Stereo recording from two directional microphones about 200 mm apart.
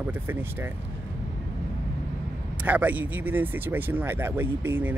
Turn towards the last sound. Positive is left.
turn(degrees=-10)  # may be behind; listen again after turning